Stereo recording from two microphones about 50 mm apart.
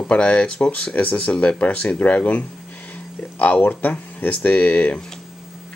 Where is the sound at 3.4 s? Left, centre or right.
Left.